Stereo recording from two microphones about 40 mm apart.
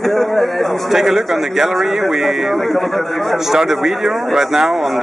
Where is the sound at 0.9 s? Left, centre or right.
Centre.